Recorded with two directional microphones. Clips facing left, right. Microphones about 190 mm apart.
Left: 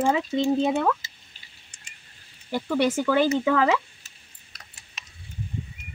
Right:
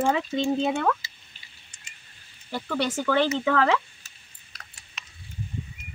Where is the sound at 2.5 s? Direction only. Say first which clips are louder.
Left 5 dB; 10° left (ahead or behind).